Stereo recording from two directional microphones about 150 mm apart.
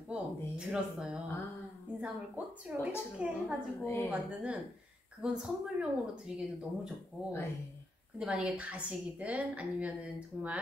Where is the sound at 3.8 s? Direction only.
15° left (ahead or behind).